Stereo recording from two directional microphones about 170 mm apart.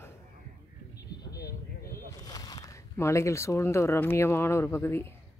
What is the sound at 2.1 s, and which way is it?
Speech, 20° left (ahead or behind).